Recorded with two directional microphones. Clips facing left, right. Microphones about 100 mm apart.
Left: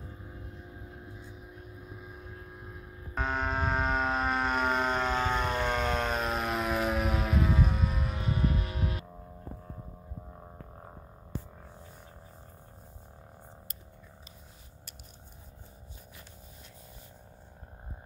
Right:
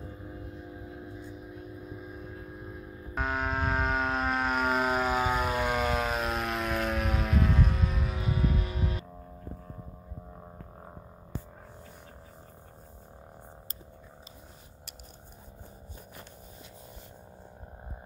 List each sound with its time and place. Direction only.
3.2 s vehicle: 5° right (ahead or behind)